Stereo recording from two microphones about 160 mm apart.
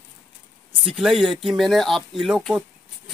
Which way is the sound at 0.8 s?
Centre (ahead or behind).